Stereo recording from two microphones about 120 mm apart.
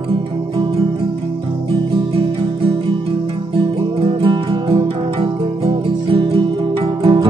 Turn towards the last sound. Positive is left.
turn(degrees=-50)  # may be behind; listen again after turning